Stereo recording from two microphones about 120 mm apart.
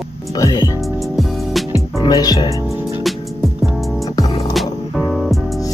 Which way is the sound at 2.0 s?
35° left (ahead or behind).